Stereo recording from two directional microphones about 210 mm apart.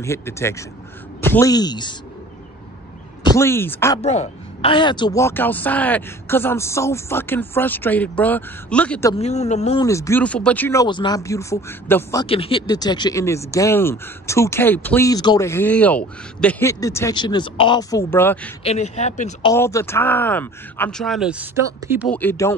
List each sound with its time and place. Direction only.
0.0 s a man's voice: 15° left (ahead or behind)
3.3 s a man's voice: 10° left (ahead or behind)
4.0 s a man's voice: 30° left (ahead or behind); by 9.1 s 5° left (ahead or behind)
9.2 s speech: 30° left (ahead or behind)
9.8 s a man's voice: 15° left (ahead or behind)
12.3 s a man's voice: 25° left (ahead or behind); by 18.5 s 10° left (ahead or behind)
18.6 s speech: 30° left (ahead or behind)
19.5 s a man's voice: 15° left (ahead or behind); by 22.0 s 10° right (ahead or behind)
22.1 s a man's voice: 10° left (ahead or behind)